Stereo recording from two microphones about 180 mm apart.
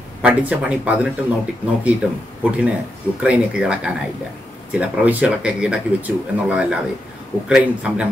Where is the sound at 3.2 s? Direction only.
5° right (ahead or behind).